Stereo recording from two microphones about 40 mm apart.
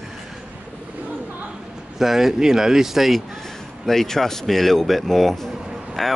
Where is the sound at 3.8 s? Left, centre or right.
Centre.